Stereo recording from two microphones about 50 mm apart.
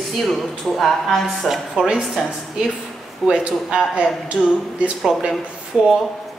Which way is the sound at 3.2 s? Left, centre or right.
Centre.